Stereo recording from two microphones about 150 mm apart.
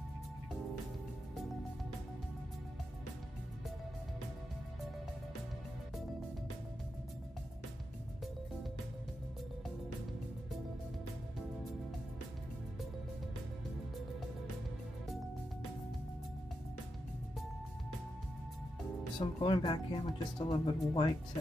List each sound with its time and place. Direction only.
19.1 s speech: 30° left (ahead or behind)